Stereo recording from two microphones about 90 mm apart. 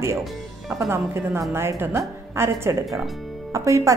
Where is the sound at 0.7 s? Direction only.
30° right (ahead or behind).